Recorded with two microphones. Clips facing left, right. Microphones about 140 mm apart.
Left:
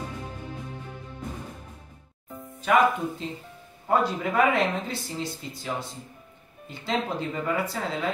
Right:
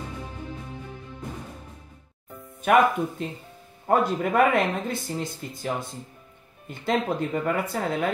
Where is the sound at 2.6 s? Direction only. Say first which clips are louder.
Right 2 dB; 55° right (ahead or behind).